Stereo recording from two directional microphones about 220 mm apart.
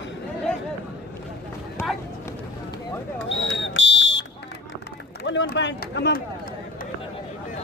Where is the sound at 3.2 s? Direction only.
60° left (ahead or behind).